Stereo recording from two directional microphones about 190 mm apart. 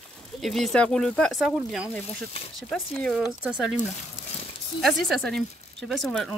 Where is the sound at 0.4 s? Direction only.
Centre (ahead or behind).